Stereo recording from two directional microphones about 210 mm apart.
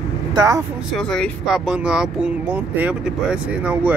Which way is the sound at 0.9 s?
Centre (ahead or behind).